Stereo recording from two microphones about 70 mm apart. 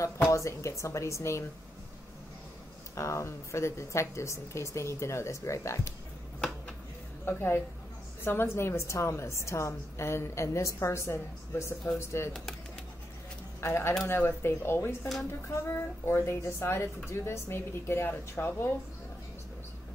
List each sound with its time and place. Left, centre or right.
0.3 s speech: left
3.0 s speech: left
7.2 s a woman's voice: left
12.3 s speech: centre
13.6 s a woman's voice: left